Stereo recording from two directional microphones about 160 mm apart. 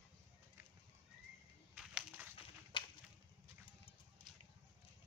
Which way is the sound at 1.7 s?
5° right (ahead or behind).